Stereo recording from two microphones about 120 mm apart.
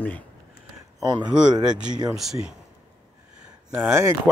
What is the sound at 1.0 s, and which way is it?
Speech, 35° right (ahead or behind).